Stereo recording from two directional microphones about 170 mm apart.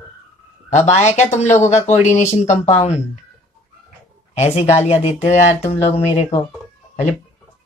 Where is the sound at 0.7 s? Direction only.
45° left (ahead or behind).